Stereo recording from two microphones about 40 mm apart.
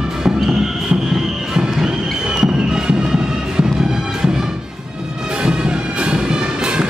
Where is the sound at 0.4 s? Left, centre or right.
Centre.